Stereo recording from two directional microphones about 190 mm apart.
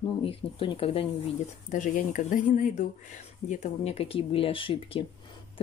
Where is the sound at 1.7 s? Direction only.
45° left (ahead or behind); by 5.0 s 25° left (ahead or behind).